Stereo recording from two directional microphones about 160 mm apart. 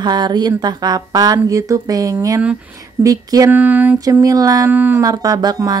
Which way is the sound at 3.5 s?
10° right (ahead or behind).